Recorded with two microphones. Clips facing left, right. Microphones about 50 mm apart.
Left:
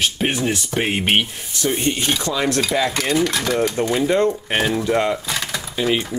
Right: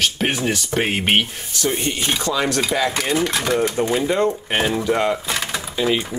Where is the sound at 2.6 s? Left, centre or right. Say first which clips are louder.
Even; centre.